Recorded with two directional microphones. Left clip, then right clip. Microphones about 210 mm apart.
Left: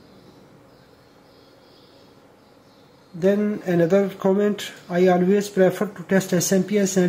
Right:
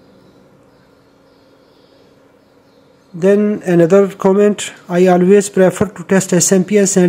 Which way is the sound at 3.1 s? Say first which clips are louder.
Right 9 dB; 40° right (ahead or behind).